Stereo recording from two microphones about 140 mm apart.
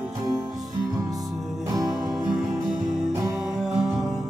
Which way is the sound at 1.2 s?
Centre (ahead or behind).